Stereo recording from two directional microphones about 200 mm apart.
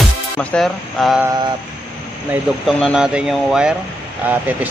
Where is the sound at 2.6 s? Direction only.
Centre (ahead or behind).